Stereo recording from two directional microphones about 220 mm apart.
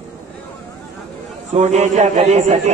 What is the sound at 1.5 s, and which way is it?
A man's voice, 30° right (ahead or behind).